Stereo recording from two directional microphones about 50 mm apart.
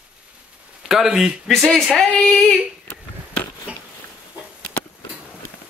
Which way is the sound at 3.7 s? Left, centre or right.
Right.